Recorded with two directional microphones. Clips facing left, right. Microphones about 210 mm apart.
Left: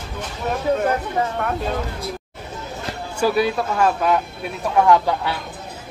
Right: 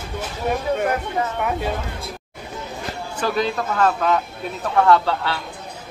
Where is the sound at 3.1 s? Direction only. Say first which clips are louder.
Left 4 dB; 10° left (ahead or behind).